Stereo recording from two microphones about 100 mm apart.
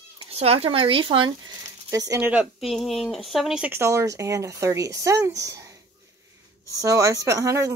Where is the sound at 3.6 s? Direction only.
20° right (ahead or behind).